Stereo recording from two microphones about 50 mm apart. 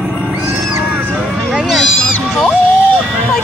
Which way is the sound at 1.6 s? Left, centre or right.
Centre.